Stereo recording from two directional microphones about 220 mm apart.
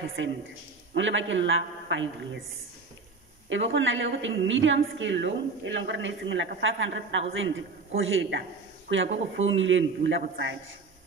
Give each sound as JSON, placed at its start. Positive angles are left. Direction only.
{"t": 0.0, "sound": "a woman's voice", "side_deg": -60}
{"t": 3.4, "sound": "a woman's voice", "side_deg": -60}